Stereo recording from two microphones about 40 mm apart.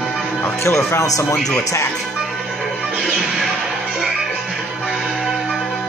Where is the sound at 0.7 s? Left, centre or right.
Left.